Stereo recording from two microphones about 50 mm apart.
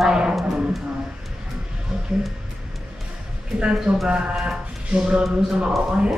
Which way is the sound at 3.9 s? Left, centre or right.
Centre.